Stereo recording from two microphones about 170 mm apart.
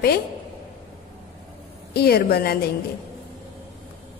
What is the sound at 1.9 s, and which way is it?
Speech, 65° left (ahead or behind).